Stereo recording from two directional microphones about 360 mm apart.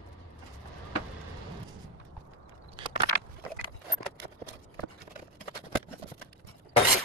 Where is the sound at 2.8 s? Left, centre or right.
Centre.